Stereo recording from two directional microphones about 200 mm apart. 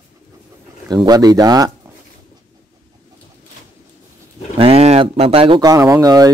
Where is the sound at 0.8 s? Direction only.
20° right (ahead or behind).